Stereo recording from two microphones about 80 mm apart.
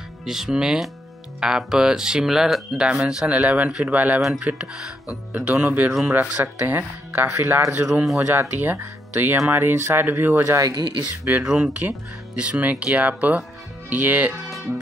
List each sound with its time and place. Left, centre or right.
0.2 s speech: centre
6.1 s speech: right
7.9 s speech: centre
8.2 s speech: right
11.2 s speech: centre